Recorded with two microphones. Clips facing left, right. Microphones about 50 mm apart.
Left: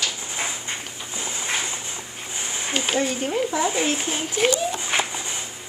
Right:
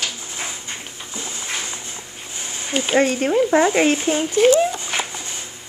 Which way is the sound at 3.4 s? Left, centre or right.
Right.